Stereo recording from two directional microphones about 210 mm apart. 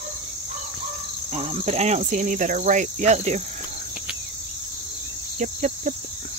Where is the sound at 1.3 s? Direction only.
30° right (ahead or behind).